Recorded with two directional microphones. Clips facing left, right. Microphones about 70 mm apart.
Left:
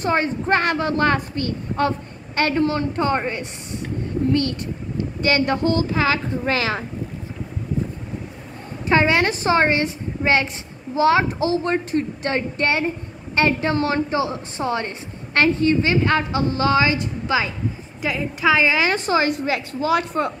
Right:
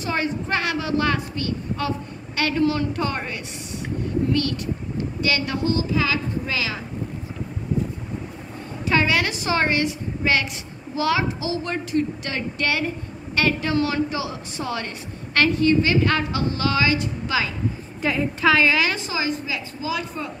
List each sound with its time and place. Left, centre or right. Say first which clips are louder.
0.0 s a woman's voice: left 4 dB; left
8.8 s a woman's voice: left 3 dB; left
18.0 s a woman's voice: right 1 dB; centre
18.5 s a woman's voice: left 1 dB; centre
18.9 s a woman's voice: left 6 dB; left